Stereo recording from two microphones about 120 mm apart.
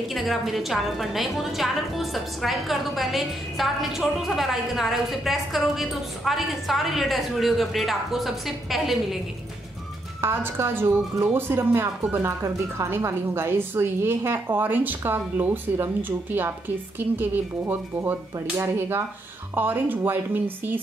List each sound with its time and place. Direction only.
0.1 s a woman's voice: centre (ahead or behind)
10.2 s speech: 20° right (ahead or behind)